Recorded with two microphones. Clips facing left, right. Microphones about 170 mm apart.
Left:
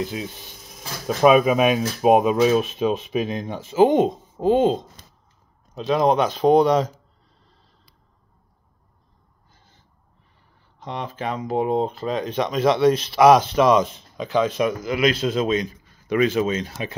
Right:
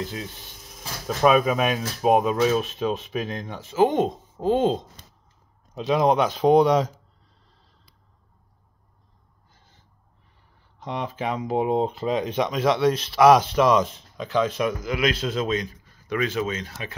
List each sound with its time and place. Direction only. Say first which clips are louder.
0.0 s speech: left 4 dB; 15° left (ahead or behind)
5.8 s speech: left 1 dB; 10° right (ahead or behind)
10.8 s speech: even; 10° right (ahead or behind); by 16.3 s 15° left (ahead or behind)
16.3 s speech: left 5 dB; 25° left (ahead or behind)